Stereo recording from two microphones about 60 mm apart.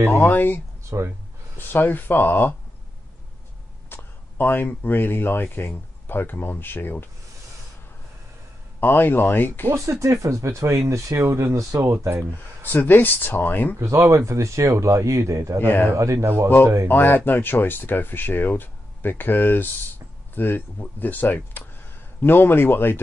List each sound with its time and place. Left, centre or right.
0.1 s speech: left
0.8 s speech: right
1.7 s speech: left
3.9 s speech: left
8.7 s speech: left
9.7 s speech: right
12.7 s speech: left
13.7 s speech: right
16.8 s speech: left